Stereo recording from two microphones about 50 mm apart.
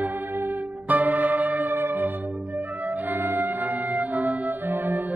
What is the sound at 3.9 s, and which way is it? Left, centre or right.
Music, right.